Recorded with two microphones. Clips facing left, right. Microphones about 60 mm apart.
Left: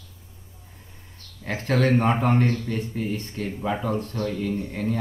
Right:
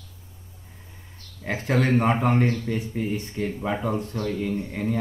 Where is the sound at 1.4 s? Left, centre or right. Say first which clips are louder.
Left 1 dB; centre.